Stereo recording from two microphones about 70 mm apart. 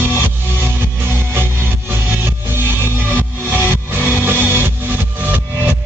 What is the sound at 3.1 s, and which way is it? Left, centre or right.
Music, right.